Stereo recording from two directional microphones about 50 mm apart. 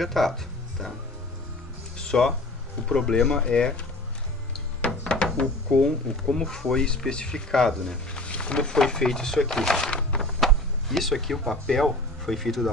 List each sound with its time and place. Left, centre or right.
0.0 s speech: centre
2.0 s a sound: centre
2.9 s speech: centre
5.1 s a sound: centre
6.3 s speech: centre
10.4 s speech: centre